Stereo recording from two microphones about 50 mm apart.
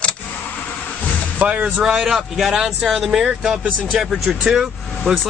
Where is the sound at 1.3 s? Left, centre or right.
Right.